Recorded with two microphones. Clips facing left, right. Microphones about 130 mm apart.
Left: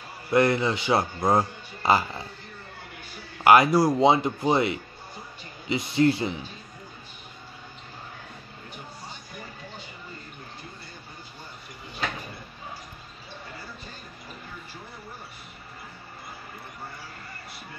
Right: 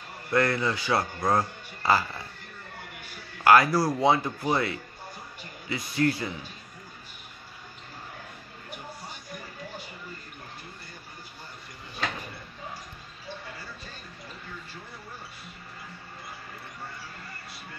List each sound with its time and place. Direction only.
0.3 s speech: 20° left (ahead or behind)
3.4 s speech: 20° left (ahead or behind)